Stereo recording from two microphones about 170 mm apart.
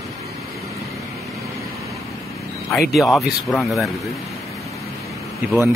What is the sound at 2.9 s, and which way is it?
Speech, centre (ahead or behind).